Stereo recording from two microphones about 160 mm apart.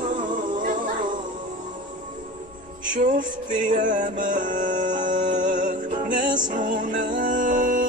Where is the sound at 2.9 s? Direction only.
55° right (ahead or behind).